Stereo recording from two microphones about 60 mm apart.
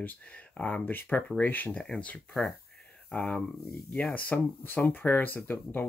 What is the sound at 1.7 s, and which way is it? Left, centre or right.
Speech, centre.